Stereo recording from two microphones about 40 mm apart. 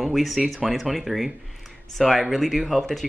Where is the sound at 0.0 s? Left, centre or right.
Centre.